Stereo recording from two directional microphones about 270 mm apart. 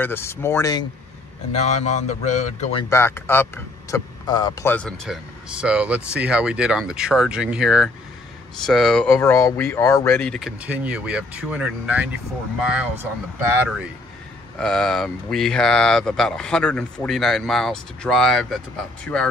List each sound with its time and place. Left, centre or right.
0.0 s speech: centre
1.8 s a man's voice: left
2.7 s speech: centre